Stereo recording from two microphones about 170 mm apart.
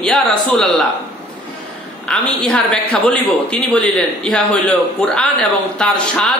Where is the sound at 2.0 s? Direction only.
5° left (ahead or behind).